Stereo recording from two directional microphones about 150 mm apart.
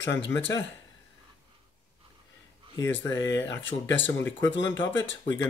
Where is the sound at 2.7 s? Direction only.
20° left (ahead or behind).